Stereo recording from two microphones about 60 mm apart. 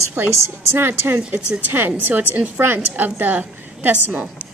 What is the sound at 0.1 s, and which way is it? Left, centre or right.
A woman's voice, right.